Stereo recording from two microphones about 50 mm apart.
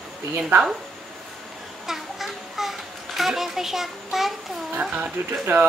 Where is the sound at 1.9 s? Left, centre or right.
Centre.